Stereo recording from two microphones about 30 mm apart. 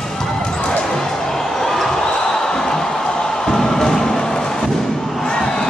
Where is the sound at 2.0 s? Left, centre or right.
Left.